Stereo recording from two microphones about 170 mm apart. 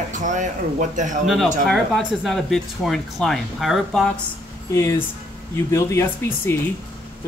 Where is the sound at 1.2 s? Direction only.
Centre (ahead or behind).